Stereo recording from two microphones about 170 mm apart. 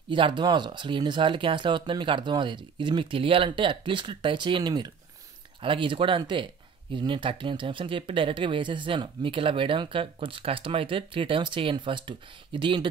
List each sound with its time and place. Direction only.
0.1 s speech: 30° right (ahead or behind)